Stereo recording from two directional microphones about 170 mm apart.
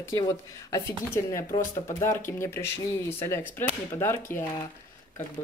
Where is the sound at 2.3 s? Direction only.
15° left (ahead or behind).